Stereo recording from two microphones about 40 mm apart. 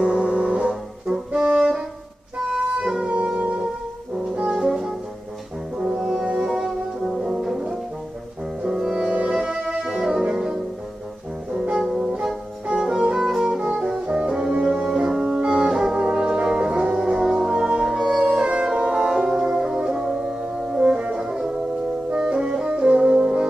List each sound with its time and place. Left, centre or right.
0.0 s music: right
0.7 s brass instrument: centre
2.5 s music: centre
4.5 s music: centre
5.9 s music: centre
8.6 s music: centre
9.8 s music: centre
11.7 s music: centre
14.3 s music: right
18.2 s music: right
22.2 s brass instrument: centre